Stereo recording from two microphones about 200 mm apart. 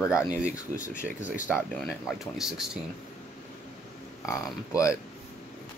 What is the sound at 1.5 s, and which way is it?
Speech, centre (ahead or behind).